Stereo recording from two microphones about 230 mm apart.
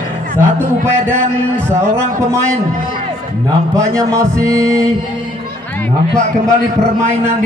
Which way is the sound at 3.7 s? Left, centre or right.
Centre.